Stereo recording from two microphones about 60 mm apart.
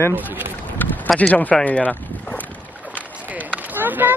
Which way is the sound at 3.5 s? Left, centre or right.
Right.